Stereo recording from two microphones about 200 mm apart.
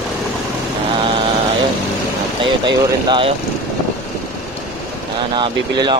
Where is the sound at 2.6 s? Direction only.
25° right (ahead or behind).